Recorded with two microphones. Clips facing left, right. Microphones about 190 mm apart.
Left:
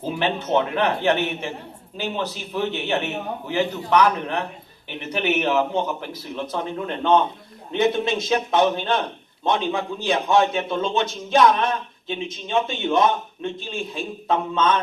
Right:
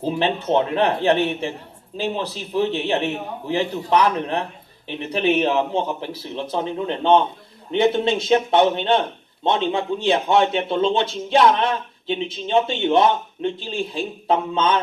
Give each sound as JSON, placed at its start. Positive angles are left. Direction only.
{"t": 0.6, "sound": "a man's voice", "side_deg": -35}